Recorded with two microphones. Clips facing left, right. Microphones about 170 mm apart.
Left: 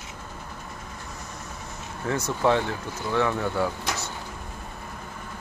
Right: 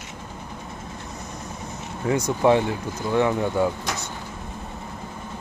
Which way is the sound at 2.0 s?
15° right (ahead or behind).